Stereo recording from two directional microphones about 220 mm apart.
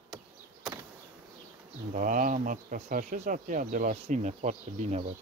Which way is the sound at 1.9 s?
35° right (ahead or behind).